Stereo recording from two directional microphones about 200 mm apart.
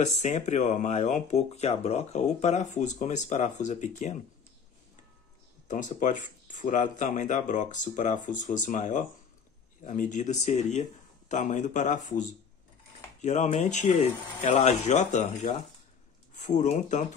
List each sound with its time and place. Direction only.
0.0 s speech: 35° left (ahead or behind)
5.7 s speech: 40° left (ahead or behind)